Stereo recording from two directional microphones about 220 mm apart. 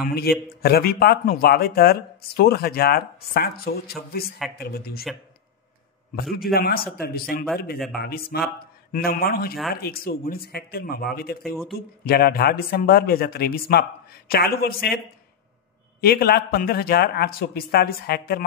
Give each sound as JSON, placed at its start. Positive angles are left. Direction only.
{"t": 0.0, "sound": "speech", "side_deg": 45}
{"t": 6.3, "sound": "speech", "side_deg": 45}
{"t": 16.0, "sound": "speech", "side_deg": 45}